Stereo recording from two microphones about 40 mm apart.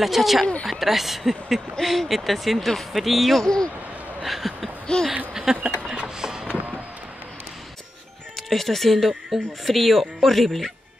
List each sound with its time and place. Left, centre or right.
0.0 s speech: centre
3.4 s a man's voice: centre
4.2 s speech: centre
4.9 s speech: left
5.3 s speech: centre
5.9 s a sound: centre
6.4 s a sound: right
8.4 s speech: centre